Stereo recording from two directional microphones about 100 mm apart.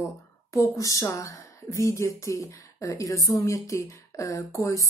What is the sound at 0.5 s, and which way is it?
Speech, 35° left (ahead or behind).